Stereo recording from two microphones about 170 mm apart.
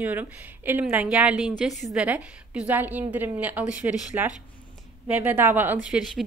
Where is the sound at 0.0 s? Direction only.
10° right (ahead or behind).